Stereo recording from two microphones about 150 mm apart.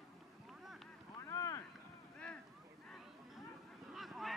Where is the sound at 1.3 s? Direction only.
20° left (ahead or behind).